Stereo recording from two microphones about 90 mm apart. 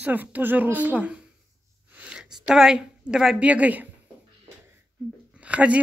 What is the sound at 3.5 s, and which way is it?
Speech, 15° right (ahead or behind).